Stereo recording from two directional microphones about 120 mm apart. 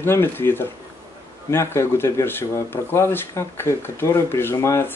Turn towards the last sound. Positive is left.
turn(degrees=20)  # may be behind; listen again after turning